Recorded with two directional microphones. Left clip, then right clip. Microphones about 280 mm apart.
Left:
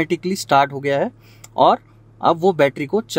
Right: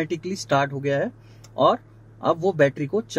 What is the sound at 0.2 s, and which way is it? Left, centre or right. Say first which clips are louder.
Speech: left 7 dB; left.